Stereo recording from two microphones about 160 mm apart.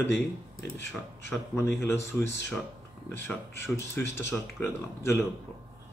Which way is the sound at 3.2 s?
15° left (ahead or behind).